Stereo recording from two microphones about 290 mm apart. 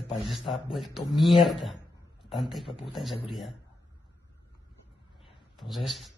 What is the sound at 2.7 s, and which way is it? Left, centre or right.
Speech, centre.